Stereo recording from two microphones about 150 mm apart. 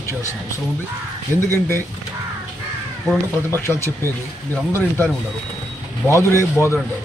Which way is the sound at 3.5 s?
15° left (ahead or behind).